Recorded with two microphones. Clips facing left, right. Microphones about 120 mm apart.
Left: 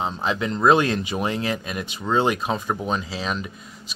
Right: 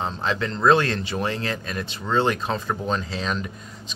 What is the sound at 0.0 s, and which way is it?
Speech, 10° left (ahead or behind).